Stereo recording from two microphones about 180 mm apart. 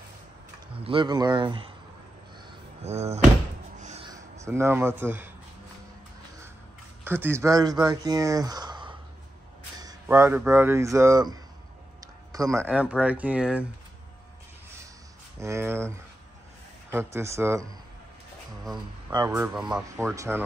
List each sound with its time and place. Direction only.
0.7 s speech: 30° right (ahead or behind)
2.8 s speech: 35° right (ahead or behind)
3.7 s a sound: 40° right (ahead or behind)
4.4 s speech: 15° right (ahead or behind)
7.1 s speech: 10° right (ahead or behind)
10.0 s speech: 15° right (ahead or behind)
15.3 s speech: 15° right (ahead or behind)
19.0 s speech: 15° right (ahead or behind)